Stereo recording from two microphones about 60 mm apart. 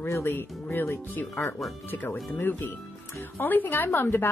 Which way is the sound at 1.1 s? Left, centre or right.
Left.